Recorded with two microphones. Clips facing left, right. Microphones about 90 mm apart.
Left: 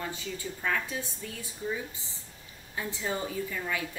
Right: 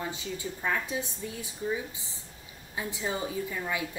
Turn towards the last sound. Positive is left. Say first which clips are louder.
# right 1 dB
turn(degrees=-15)  # may be behind; listen again after turning